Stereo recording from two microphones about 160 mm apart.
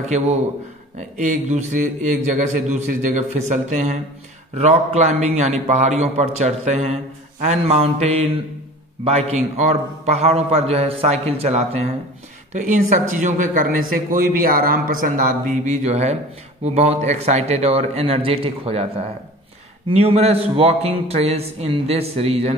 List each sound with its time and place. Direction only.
1.1 s a man's voice: 50° right (ahead or behind)
19.9 s a man's voice: 40° right (ahead or behind)